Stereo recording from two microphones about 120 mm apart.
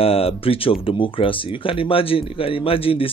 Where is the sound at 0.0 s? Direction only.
55° left (ahead or behind).